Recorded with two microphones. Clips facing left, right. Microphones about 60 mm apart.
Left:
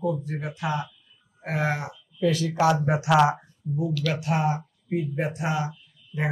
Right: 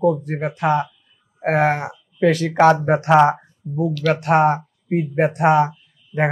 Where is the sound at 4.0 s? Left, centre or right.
Right.